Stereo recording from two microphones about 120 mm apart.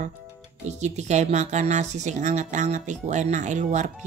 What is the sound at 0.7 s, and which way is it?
Speech, 70° right (ahead or behind).